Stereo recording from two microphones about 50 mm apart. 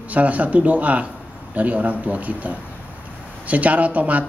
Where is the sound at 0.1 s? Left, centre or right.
Right.